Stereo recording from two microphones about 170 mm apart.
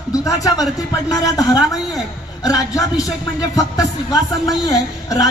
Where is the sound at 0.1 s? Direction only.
20° left (ahead or behind).